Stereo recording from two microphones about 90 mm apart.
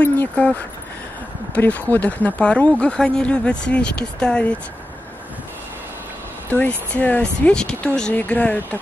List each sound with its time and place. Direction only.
0.0 s speech: 15° left (ahead or behind)
6.9 s speech: 15° left (ahead or behind)